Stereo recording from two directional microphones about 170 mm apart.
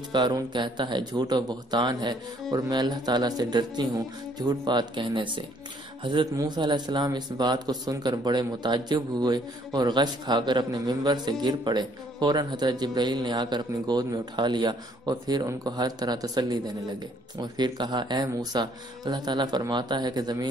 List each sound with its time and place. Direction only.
0.1 s speech: 25° right (ahead or behind)